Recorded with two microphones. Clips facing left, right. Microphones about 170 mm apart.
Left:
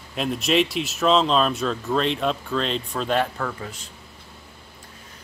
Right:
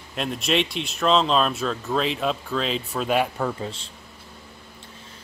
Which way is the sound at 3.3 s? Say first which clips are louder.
Right 3 dB; 25° right (ahead or behind).